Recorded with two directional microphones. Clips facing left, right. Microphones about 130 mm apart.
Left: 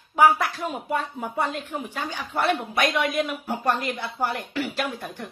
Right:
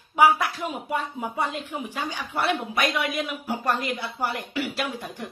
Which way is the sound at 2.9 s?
45° left (ahead or behind).